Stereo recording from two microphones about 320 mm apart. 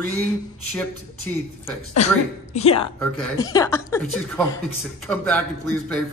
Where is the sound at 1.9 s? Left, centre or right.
Centre.